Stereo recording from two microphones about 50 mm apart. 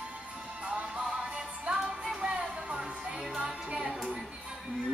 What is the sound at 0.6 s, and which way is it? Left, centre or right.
Music, right.